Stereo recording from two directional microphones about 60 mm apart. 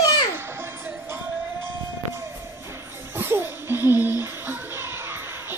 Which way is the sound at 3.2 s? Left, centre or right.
Right.